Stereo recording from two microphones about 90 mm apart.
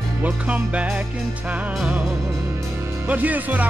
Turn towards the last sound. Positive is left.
turn(degrees=-15)  # may be behind; listen again after turning